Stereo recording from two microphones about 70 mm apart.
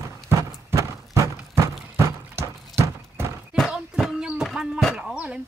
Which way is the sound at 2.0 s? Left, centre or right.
Right.